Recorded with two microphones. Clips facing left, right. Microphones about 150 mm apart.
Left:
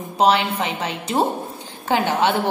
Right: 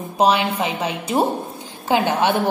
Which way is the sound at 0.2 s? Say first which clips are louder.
Even; 15° right (ahead or behind).